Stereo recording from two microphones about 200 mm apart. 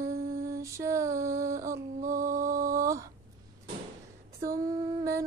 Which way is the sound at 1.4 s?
15° right (ahead or behind).